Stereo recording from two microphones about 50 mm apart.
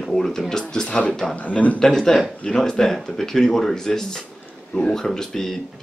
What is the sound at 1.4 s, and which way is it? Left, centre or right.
Speech, left.